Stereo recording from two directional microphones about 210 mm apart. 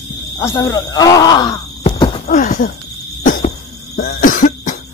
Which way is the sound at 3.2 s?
40° left (ahead or behind).